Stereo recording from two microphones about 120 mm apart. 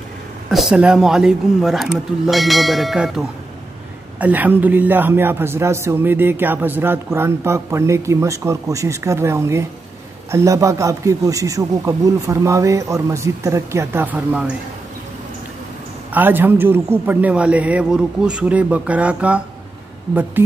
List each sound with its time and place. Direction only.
0.5 s speech: centre (ahead or behind)
4.2 s a man's voice: 15° right (ahead or behind)
16.1 s a man's voice: 15° right (ahead or behind)